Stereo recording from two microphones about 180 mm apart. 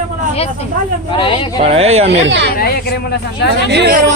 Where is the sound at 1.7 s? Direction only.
35° right (ahead or behind).